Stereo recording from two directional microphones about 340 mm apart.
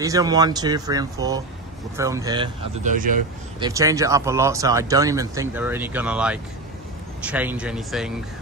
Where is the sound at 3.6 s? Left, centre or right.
Centre.